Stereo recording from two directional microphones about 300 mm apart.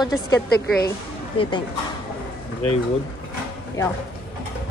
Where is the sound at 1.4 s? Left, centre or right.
Centre.